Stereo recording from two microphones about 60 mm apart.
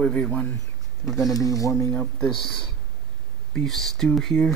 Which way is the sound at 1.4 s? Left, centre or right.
Left.